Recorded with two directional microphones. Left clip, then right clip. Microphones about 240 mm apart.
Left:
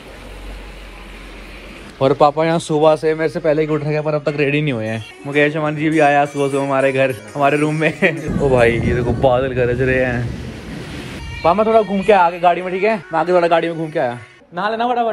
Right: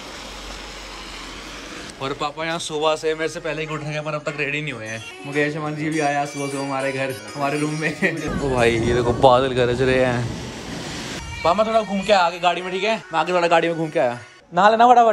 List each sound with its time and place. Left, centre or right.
2.0 s speech: centre
5.3 s a man's voice: centre
8.5 s a man's voice: centre
11.4 s a man's voice: centre